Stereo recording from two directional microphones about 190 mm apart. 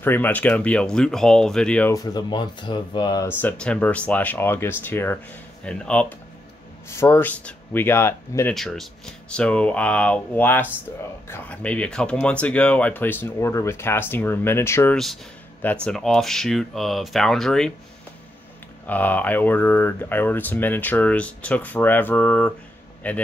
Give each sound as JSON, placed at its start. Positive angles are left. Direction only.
{"t": 0.0, "sound": "speech", "side_deg": 10}
{"t": 2.0, "sound": "speech", "side_deg": 20}
{"t": 3.3, "sound": "speech", "side_deg": 10}
{"t": 18.9, "sound": "speech", "side_deg": 10}